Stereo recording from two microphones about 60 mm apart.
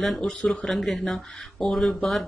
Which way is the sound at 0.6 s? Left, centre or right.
Centre.